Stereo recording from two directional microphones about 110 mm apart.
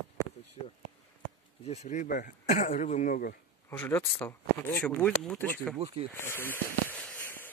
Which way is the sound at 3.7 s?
20° left (ahead or behind).